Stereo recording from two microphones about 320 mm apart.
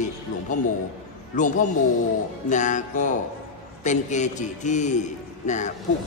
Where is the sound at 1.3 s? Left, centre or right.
Left.